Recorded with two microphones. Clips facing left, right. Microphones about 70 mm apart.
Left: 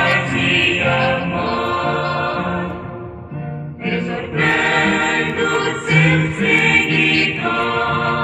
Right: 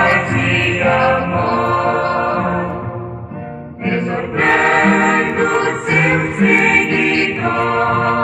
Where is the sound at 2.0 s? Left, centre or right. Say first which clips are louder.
Right 4 dB; right.